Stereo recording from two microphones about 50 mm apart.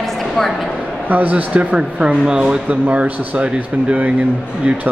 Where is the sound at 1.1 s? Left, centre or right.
Right.